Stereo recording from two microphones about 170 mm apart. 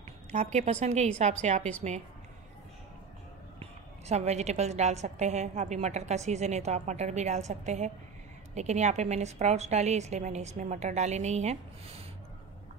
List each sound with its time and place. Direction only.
0.3 s a woman's voice: 40° right (ahead or behind)
4.1 s a woman's voice: 40° right (ahead or behind)